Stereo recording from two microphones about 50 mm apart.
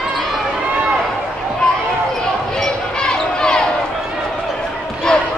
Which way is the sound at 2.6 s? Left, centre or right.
Centre.